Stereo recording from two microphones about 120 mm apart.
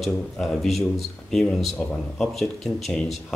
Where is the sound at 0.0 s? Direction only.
Centre (ahead or behind).